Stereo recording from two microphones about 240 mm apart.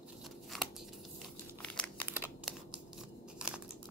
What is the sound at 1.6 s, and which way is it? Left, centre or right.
Crumpling, centre.